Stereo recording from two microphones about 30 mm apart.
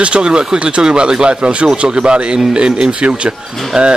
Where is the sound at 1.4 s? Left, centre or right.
Right.